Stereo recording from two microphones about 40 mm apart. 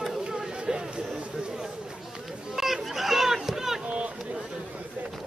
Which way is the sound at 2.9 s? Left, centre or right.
Centre.